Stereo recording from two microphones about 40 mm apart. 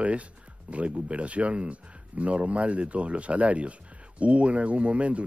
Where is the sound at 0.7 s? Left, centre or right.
Right.